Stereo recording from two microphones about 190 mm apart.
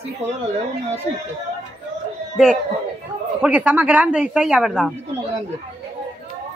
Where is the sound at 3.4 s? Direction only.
5° right (ahead or behind).